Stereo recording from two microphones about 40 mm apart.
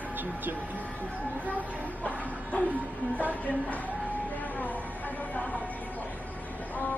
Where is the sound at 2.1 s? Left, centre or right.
Left.